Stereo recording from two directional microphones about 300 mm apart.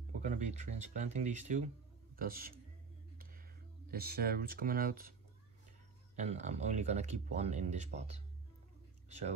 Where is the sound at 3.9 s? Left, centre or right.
Right.